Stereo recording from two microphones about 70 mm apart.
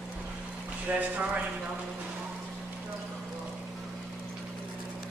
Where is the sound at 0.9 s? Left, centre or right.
Centre.